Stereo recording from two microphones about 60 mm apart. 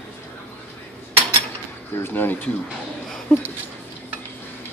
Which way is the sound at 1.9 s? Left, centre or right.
Left.